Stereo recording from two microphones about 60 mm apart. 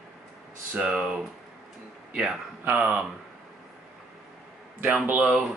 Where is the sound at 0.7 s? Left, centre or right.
Centre.